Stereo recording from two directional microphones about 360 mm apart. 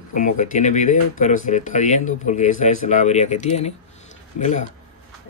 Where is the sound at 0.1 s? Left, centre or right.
Left.